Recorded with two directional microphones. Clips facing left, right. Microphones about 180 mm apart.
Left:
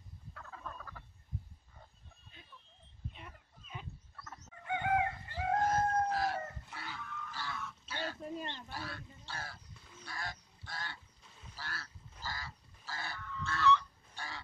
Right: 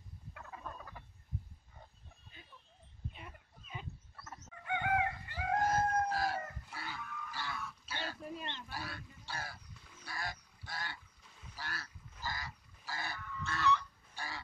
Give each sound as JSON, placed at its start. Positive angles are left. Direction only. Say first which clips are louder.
{"t": 0.3, "sound": "frog", "louder": "even", "side_deg": -15}
{"t": 3.2, "sound": "fowl", "louder": "even", "side_deg": -5}
{"t": 4.6, "sound": "chicken", "louder": "left 1 dB", "side_deg": 30}
{"t": 5.7, "sound": "chicken", "louder": "left 1 dB", "side_deg": -5}
{"t": 8.6, "sound": "goose", "louder": "even", "side_deg": -10}
{"t": 9.2, "sound": "crow", "louder": "right 3 dB", "side_deg": -10}
{"t": 10.0, "sound": "goose", "louder": "right 1 dB", "side_deg": -10}
{"t": 14.1, "sound": "chicken", "louder": "right 1 dB", "side_deg": -10}